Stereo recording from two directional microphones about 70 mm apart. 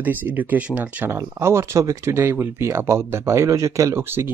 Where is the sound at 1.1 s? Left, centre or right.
Right.